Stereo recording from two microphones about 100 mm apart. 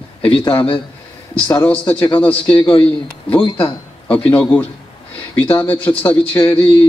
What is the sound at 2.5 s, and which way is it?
Speech, 60° left (ahead or behind).